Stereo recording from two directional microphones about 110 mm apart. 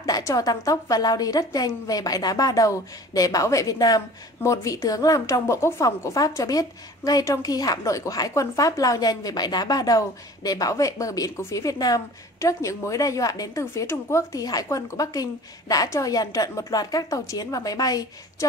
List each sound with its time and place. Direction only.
0.0 s a woman's voice: 35° left (ahead or behind)